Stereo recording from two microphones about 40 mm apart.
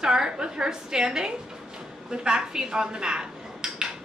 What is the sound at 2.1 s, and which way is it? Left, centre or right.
Speech, centre.